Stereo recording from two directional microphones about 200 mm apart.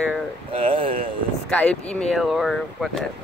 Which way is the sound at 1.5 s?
5° left (ahead or behind).